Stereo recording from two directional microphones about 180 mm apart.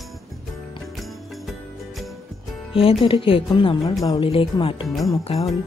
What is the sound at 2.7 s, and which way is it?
Speech, 30° left (ahead or behind).